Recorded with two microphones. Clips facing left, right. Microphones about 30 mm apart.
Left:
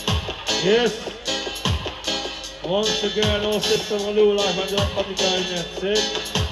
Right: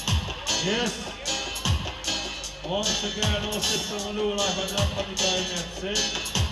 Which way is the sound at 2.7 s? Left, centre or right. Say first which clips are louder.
Left 6 dB; left.